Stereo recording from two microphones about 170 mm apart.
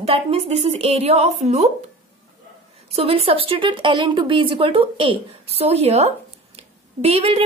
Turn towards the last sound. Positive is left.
turn(degrees=-35)  # may be behind; listen again after turning